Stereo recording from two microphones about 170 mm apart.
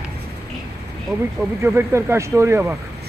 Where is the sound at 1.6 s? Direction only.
15° right (ahead or behind).